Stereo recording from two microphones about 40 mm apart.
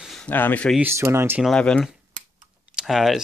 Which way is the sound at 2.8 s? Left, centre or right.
Centre.